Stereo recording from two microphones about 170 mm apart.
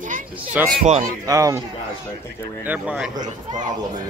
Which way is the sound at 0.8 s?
40° right (ahead or behind).